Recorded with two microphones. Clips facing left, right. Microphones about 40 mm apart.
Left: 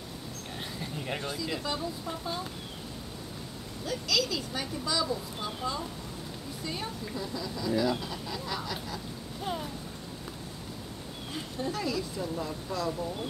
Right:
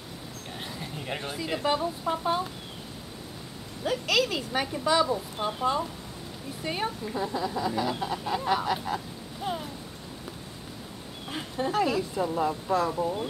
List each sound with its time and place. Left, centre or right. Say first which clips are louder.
0.6 s a sound: right 1 dB; centre
1.2 s speech: right 4 dB; right
3.8 s speech: right 5 dB; right
9.4 s speech: right 2 dB; centre
11.2 s speech: right 4 dB; right